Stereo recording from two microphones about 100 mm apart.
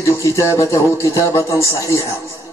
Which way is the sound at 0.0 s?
30° left (ahead or behind).